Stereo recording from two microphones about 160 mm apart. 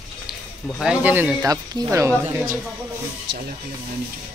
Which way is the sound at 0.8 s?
10° right (ahead or behind).